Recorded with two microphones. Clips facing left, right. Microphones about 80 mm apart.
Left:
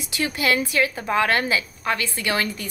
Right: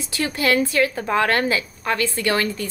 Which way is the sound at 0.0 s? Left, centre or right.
Centre.